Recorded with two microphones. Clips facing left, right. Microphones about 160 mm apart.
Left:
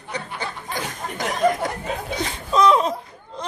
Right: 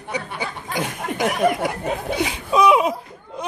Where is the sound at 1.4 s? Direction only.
10° right (ahead or behind).